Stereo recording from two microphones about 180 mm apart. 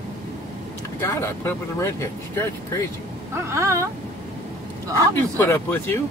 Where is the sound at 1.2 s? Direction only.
15° left (ahead or behind).